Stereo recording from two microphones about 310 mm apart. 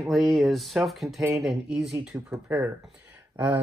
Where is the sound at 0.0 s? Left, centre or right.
Centre.